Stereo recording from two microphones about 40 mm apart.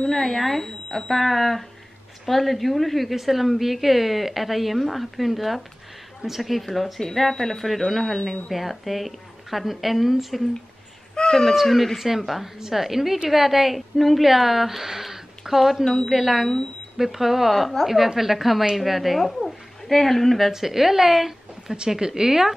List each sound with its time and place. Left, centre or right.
0.0 s speech: centre
11.1 s baby cry: centre
11.5 s speech: centre
20.5 s a woman's voice: centre